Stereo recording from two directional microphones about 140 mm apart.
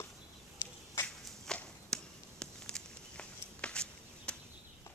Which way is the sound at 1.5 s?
5° left (ahead or behind).